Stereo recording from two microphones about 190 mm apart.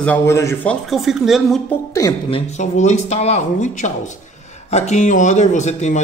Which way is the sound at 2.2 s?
35° left (ahead or behind).